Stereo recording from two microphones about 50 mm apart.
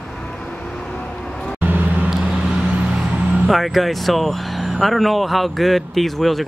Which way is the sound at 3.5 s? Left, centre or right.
Centre.